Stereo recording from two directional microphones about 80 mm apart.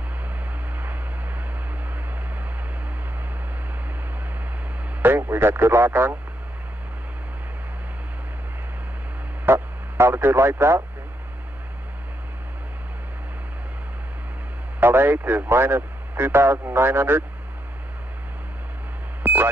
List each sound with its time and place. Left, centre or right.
5.0 s speech: right
9.5 s radio: right
14.8 s a man's voice: right
19.2 s a sound: right